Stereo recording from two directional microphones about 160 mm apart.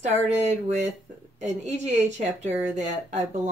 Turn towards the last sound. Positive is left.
turn(degrees=-50)  # may be behind; listen again after turning